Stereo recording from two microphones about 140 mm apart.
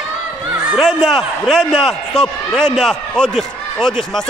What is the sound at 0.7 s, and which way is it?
A man's voice, centre (ahead or behind).